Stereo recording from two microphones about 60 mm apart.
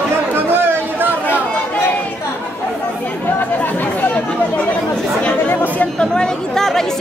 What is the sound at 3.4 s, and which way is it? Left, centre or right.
Chatter, left.